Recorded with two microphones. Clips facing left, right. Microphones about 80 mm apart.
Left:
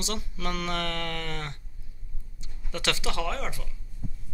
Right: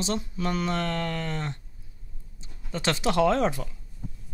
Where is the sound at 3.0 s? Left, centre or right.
Right.